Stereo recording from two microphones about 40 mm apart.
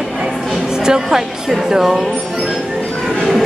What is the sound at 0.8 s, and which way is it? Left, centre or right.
A woman's voice, centre.